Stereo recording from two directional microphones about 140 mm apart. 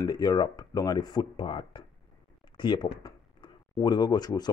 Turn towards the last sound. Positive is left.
turn(degrees=30)  # may be behind; listen again after turning